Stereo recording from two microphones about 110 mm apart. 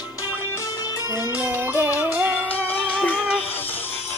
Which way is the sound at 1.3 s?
15° right (ahead or behind).